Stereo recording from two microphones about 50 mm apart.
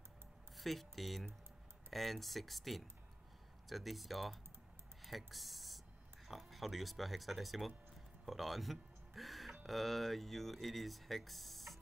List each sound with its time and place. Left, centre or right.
0.6 s speech: centre